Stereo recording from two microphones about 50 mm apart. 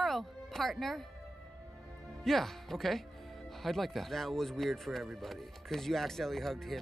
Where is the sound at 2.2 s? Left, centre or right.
Centre.